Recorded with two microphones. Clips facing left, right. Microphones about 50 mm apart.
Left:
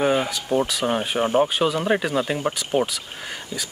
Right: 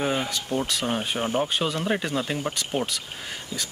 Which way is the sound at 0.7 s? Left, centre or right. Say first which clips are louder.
Left 4 dB; centre.